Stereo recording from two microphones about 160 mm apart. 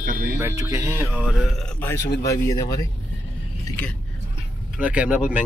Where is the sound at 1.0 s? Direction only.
5° right (ahead or behind).